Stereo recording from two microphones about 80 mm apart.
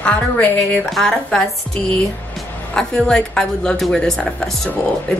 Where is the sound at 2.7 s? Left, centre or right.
Centre.